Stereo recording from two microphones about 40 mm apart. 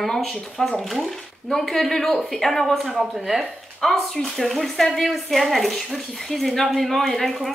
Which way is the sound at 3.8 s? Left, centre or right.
Centre.